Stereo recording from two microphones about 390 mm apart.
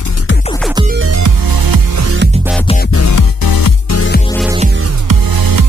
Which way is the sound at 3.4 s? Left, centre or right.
Left.